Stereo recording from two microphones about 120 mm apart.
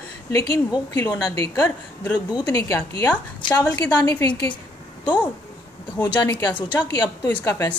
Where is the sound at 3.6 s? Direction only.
10° left (ahead or behind).